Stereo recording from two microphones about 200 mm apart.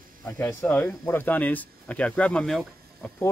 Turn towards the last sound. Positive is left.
turn(degrees=0)  # may be behind; listen again after turning